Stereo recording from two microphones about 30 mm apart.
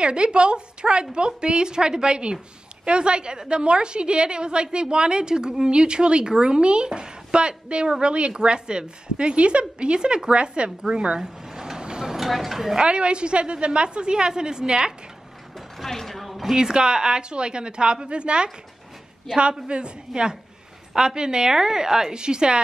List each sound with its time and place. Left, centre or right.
0.0 s a woman's voice: right
11.1 s a sound: centre
11.8 s train: right
12.2 s speech: centre
12.7 s a woman's voice: right
15.8 s a sound: centre
16.4 s a woman's voice: right
19.2 s a woman's voice: right
20.1 s a woman's voice: centre
20.9 s a woman's voice: right